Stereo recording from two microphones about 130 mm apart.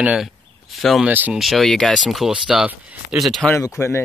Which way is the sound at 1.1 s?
15° right (ahead or behind).